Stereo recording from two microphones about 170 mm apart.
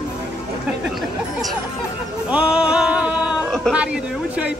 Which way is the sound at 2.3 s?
5° right (ahead or behind).